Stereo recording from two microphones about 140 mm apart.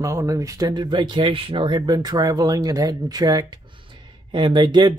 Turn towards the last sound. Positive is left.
turn(degrees=-30)  # may be behind; listen again after turning